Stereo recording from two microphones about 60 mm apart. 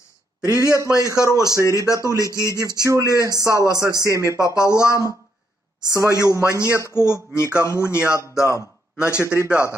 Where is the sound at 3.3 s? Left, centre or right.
Right.